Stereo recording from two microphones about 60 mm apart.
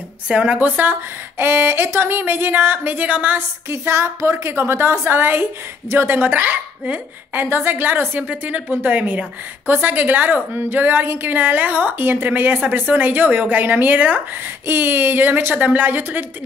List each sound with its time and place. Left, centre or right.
0.3 s a woman's voice: centre
3.3 s a woman's voice: right
8.2 s a woman's voice: right